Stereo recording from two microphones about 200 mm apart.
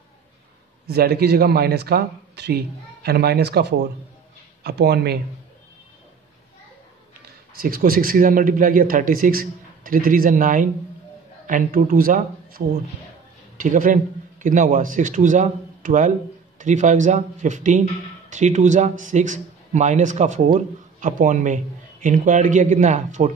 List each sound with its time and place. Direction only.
0.8 s speech: 50° right (ahead or behind)
7.5 s speech: 45° right (ahead or behind)